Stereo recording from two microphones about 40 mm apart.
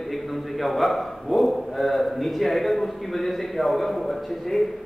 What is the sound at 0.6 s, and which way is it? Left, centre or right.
A man's voice, centre.